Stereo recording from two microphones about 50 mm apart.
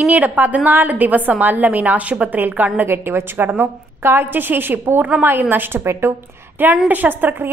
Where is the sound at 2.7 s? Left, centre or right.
Right.